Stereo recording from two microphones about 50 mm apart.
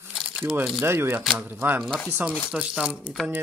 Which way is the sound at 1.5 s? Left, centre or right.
Right.